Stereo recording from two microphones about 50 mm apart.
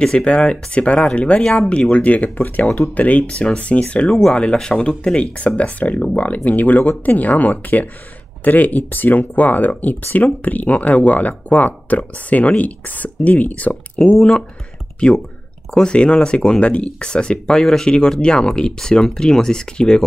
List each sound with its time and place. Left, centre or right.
0.0 s speech: centre
14.0 s speech: centre